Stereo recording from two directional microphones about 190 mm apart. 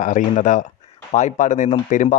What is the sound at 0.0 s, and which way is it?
Speech, 40° left (ahead or behind).